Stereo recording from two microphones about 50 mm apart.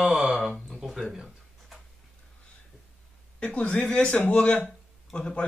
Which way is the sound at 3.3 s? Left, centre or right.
Left.